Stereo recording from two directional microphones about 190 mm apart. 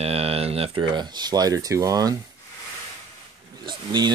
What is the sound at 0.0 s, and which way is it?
Speech, 30° right (ahead or behind).